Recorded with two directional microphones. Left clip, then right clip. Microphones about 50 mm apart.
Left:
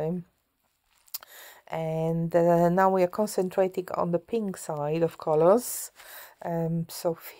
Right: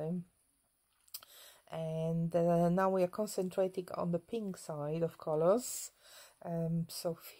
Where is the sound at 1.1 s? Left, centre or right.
Left.